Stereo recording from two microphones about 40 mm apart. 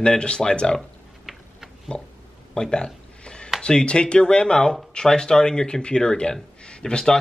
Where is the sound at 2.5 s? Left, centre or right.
Centre.